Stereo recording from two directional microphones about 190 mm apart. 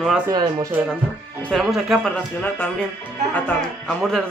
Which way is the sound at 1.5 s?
Centre (ahead or behind).